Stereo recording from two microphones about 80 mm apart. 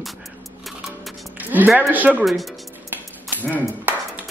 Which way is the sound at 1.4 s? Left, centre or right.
Right.